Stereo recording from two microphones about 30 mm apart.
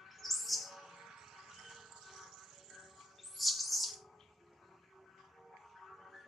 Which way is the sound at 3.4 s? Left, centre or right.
Centre.